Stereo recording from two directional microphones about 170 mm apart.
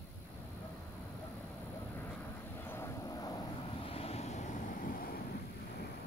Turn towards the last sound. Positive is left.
turn(degrees=55)  # may be behind; listen again after turning